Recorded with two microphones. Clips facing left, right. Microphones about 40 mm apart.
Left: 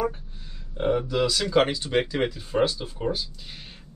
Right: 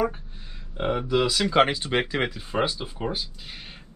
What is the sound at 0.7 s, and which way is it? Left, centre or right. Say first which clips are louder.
Speech: even; centre.